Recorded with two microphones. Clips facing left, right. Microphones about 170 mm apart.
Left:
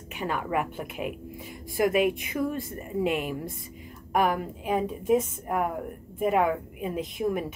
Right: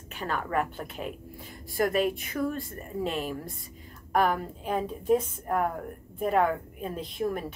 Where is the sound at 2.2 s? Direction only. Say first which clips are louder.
Left 1 dB; 20° left (ahead or behind).